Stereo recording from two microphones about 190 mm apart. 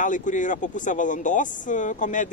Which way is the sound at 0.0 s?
40° left (ahead or behind).